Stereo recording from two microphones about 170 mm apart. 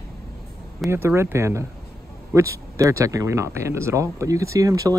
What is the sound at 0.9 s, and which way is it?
Speech, 15° right (ahead or behind).